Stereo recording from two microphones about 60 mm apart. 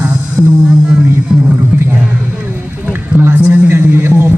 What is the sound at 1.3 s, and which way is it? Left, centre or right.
Music, centre.